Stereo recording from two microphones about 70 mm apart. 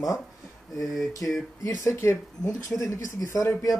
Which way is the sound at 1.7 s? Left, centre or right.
Left.